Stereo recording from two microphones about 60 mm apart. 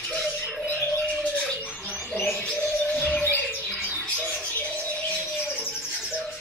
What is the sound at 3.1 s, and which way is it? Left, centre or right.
Bird, left.